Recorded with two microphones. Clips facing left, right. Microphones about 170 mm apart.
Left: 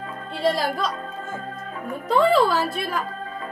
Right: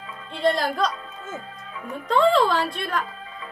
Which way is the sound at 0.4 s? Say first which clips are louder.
Right 1 dB; centre (ahead or behind).